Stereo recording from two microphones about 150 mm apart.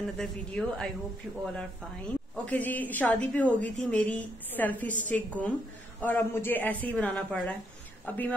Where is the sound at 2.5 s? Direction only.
10° left (ahead or behind).